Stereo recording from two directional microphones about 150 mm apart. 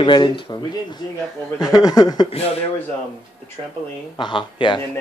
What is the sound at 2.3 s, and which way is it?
Speech, 40° left (ahead or behind).